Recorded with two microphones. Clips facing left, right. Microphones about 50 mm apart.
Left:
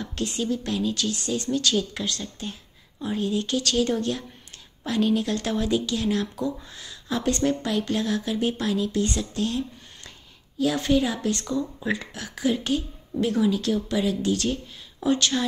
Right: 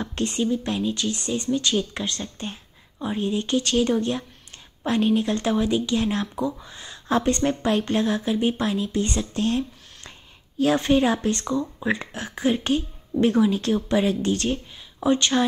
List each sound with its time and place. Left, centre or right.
0.0 s speech: right
0.4 s a woman's voice: right
6.9 s a woman's voice: right
9.3 s a sound: right
10.6 s speech: right